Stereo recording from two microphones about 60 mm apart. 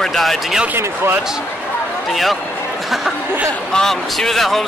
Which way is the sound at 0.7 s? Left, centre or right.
Right.